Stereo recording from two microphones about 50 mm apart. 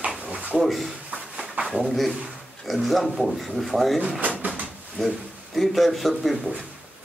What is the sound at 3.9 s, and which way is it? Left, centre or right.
Speech, centre.